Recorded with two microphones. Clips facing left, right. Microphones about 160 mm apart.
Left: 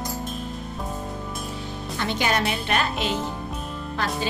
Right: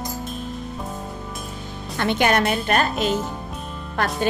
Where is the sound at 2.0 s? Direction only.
55° right (ahead or behind).